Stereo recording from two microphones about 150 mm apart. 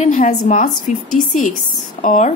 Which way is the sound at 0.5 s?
55° left (ahead or behind).